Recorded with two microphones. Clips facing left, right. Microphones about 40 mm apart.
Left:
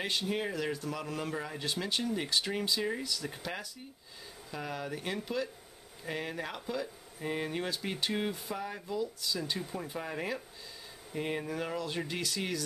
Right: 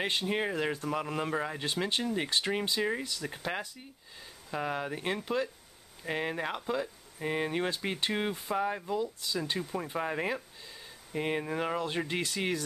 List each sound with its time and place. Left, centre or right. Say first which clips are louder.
0.0 s a man's voice: right 3 dB; right